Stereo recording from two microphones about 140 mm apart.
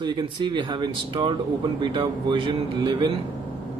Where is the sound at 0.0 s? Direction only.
35° right (ahead or behind).